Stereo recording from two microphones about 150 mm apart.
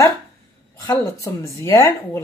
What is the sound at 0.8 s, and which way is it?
Speech, 20° left (ahead or behind).